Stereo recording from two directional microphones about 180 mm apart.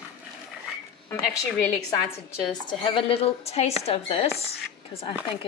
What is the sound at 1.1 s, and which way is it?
A woman's voice, 20° left (ahead or behind).